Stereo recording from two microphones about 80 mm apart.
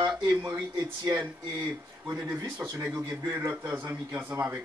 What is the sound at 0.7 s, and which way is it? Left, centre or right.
Speech, right.